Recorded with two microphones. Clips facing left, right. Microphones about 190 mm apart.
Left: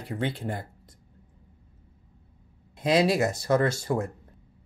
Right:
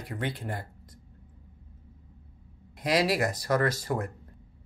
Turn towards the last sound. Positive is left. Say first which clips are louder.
# left 3 dB
turn(degrees=25)  # may be behind; listen again after turning